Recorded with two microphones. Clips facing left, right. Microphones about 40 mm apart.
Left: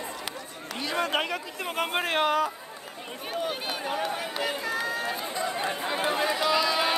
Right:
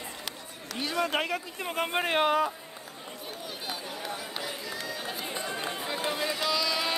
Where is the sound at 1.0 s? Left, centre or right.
Centre.